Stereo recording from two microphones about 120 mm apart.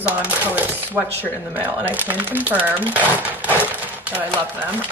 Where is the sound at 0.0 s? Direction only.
15° right (ahead or behind).